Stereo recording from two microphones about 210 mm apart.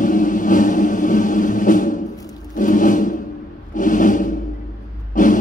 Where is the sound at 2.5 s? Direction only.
40° left (ahead or behind).